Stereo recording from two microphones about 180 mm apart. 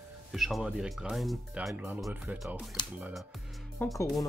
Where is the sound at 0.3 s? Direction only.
Centre (ahead or behind).